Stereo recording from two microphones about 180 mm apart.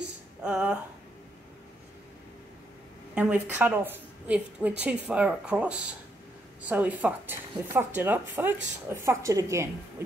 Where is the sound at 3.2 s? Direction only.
5° right (ahead or behind).